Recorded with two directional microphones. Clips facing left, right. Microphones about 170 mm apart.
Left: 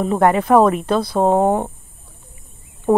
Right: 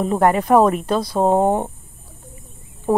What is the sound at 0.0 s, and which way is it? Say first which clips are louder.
Speech: left 1 dB; centre (ahead or behind).